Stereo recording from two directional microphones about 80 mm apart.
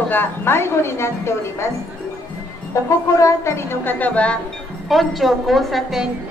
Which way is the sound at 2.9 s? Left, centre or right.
Left.